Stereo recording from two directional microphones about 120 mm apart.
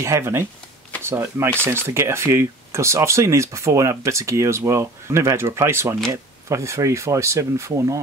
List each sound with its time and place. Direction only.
0.0 s speech: 20° right (ahead or behind)